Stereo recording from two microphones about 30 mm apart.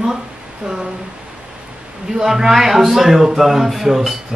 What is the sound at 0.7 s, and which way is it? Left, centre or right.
Speech, right.